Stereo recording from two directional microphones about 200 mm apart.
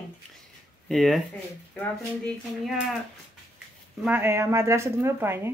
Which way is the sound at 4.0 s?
10° right (ahead or behind).